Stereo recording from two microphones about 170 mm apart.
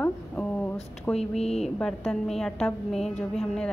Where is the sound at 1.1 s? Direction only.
40° left (ahead or behind).